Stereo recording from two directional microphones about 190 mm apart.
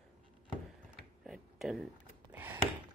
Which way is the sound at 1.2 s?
Centre (ahead or behind).